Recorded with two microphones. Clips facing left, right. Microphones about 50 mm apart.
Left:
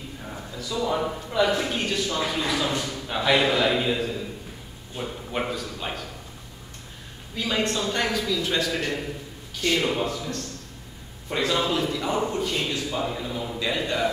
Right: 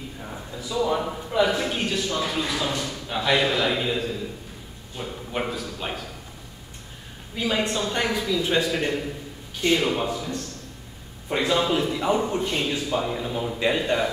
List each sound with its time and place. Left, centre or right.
0.6 s a man's voice: centre
0.8 s a man's voice: centre
7.3 s a man's voice: centre
9.8 s a man's voice: centre
11.8 s a man's voice: right